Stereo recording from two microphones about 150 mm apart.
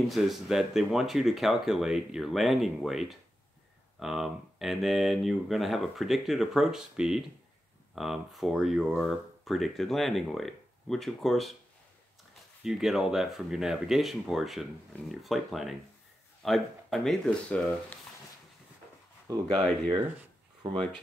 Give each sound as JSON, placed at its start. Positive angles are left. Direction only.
{"t": 0.1, "sound": "speech", "side_deg": 0}
{"t": 12.6, "sound": "speech", "side_deg": 0}
{"t": 19.3, "sound": "speech", "side_deg": -25}
{"t": 20.7, "sound": "speech", "side_deg": 5}